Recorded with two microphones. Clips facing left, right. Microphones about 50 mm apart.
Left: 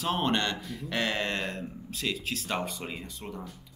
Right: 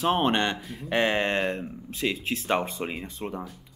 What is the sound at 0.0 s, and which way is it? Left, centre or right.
Speech, right.